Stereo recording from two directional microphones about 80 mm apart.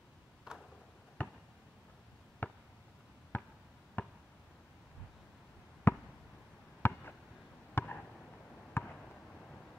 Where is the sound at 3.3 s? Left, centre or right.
Left.